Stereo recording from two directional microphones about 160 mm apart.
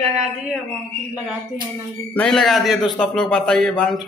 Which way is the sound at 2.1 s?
5° left (ahead or behind).